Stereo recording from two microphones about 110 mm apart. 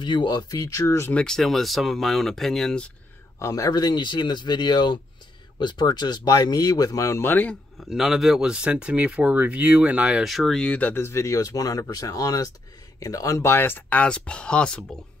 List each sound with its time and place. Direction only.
0.0 s speech: 45° left (ahead or behind); by 1.1 s 25° left (ahead or behind)
1.1 s speech: 5° left (ahead or behind)
3.3 s speech: 30° left (ahead or behind)
7.9 s speech: 5° right (ahead or behind)
10.2 s speech: centre (ahead or behind)